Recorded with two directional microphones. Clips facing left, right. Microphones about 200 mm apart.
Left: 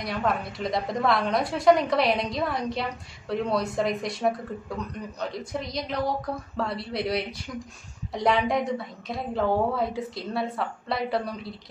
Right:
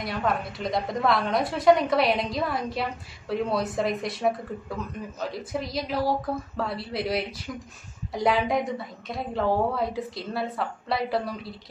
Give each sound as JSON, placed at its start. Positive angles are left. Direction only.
{"t": 0.0, "sound": "a woman's voice", "side_deg": 0}